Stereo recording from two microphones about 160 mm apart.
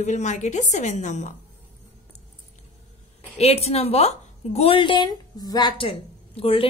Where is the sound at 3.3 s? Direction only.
40° left (ahead or behind).